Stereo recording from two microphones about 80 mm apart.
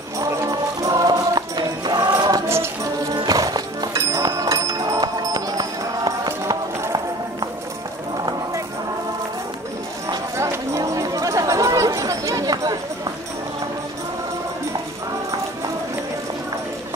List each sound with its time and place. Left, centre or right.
0.3 s music: right
2.4 s music: right
3.3 s music: right
3.9 s music: right
10.0 s clip-clop: right
10.8 s chatter: right